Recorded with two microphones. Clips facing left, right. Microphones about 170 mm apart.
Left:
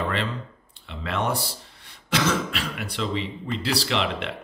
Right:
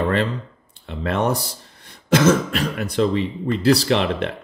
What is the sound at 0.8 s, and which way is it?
Speech, 45° right (ahead or behind).